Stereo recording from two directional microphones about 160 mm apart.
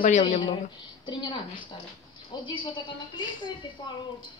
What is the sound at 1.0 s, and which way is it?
A woman's voice, 30° left (ahead or behind).